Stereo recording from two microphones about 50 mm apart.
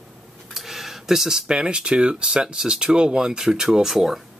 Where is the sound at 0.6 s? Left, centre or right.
Centre.